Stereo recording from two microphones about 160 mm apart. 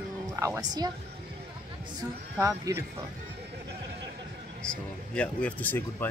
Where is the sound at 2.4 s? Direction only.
20° right (ahead or behind).